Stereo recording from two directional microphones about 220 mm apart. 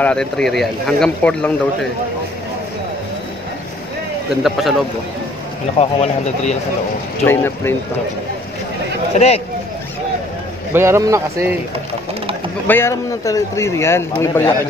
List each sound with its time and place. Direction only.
0.0 s speech: 5° left (ahead or behind)
4.4 s speech: centre (ahead or behind)
5.8 s speech: 30° left (ahead or behind)
7.2 s a man's voice: 10° left (ahead or behind)
10.7 s speech: 10° right (ahead or behind)
12.6 s a man's voice: 10° left (ahead or behind)